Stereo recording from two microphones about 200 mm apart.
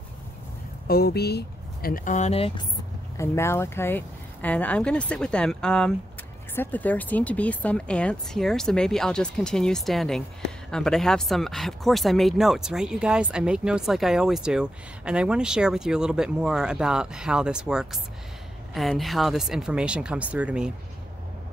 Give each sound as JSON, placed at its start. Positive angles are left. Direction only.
{"t": 0.8, "sound": "speech", "side_deg": 50}
{"t": 3.2, "sound": "speech", "side_deg": 10}